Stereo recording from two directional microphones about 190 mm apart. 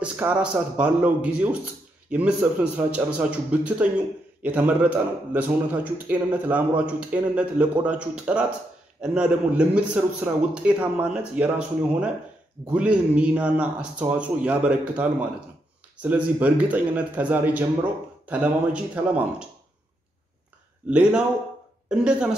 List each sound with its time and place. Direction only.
0.0 s a man's voice: 5° right (ahead or behind)
20.9 s a man's voice: 5° right (ahead or behind)